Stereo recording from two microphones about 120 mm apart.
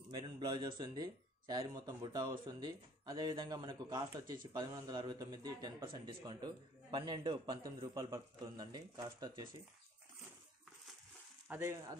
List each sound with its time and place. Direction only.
0.1 s speech: 40° right (ahead or behind)
11.4 s speech: 20° right (ahead or behind)